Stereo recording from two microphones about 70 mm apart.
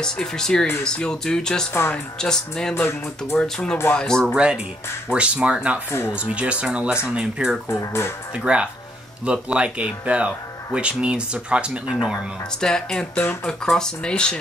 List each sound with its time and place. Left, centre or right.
0.0 s speech: centre
2.7 s speech: left
3.3 s speech: centre
4.3 s speech: centre
7.7 s speech: left
8.5 s speech: centre
12.5 s speech: centre